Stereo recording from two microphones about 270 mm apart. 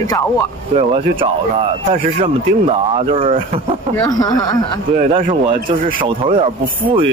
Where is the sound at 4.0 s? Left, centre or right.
Centre.